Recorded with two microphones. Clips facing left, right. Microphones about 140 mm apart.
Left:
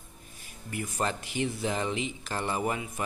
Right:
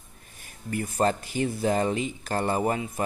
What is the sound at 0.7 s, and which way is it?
Speech, 40° right (ahead or behind).